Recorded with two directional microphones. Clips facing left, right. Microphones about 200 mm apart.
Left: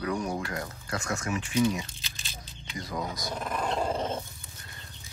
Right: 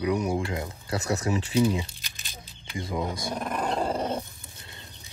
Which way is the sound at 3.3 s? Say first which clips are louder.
Right 1 dB; 10° right (ahead or behind).